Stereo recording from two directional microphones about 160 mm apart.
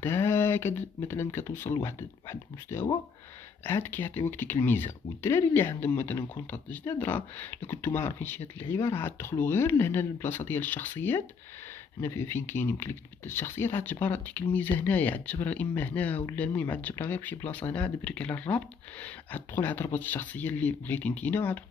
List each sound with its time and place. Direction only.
0.0 s speech: 15° left (ahead or behind)